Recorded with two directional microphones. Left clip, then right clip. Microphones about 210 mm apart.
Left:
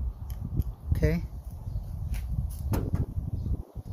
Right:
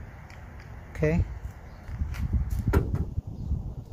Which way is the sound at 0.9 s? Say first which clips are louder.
Right 3 dB; centre (ahead or behind).